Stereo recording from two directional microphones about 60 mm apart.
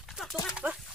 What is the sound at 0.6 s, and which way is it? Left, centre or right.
Speech, right.